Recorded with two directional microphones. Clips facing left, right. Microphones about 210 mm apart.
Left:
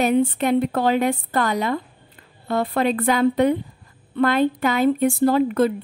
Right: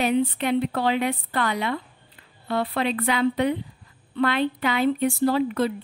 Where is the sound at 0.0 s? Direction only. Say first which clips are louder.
Left 4 dB; 45° left (ahead or behind).